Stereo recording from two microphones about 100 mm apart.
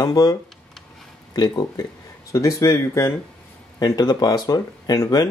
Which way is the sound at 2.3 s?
30° left (ahead or behind).